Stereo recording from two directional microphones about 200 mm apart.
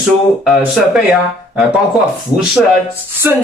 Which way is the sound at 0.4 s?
Centre (ahead or behind).